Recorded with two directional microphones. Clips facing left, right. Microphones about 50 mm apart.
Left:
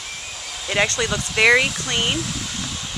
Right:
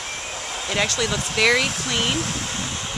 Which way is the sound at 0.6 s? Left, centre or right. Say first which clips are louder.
Left 3 dB; left.